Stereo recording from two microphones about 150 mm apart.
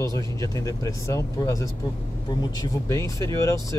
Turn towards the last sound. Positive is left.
turn(degrees=20)  # may be behind; listen again after turning